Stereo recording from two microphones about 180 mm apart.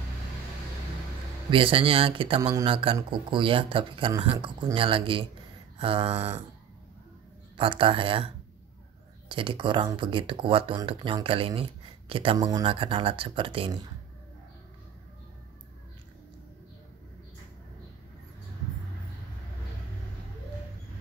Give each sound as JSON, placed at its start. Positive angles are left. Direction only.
{"t": 1.5, "sound": "speech", "side_deg": -30}
{"t": 5.8, "sound": "a sound", "side_deg": -30}
{"t": 7.5, "sound": "speech", "side_deg": -30}
{"t": 9.3, "sound": "speech", "side_deg": -30}